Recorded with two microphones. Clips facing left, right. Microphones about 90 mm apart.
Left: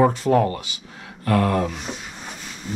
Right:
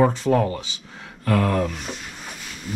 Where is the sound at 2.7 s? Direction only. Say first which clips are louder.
Even; 5° right (ahead or behind).